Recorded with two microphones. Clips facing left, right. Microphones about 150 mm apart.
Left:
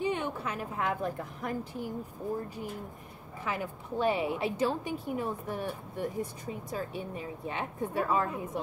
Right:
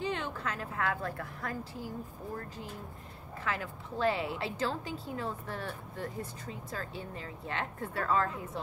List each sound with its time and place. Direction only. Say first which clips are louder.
0.0 s a woman's voice: left 3 dB; 15° left (ahead or behind)